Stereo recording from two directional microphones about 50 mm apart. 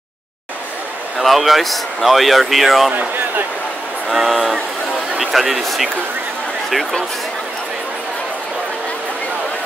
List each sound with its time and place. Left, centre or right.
1.2 s speech: centre
2.9 s speech: right
4.1 s speech: centre